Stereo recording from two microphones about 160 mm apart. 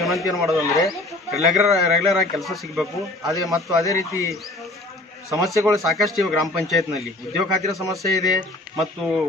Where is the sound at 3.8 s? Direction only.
20° left (ahead or behind).